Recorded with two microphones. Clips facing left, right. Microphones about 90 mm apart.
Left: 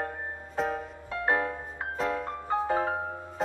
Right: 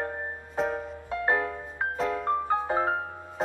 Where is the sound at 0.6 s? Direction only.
Centre (ahead or behind).